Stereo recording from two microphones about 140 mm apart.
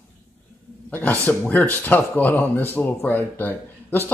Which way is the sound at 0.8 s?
10° left (ahead or behind).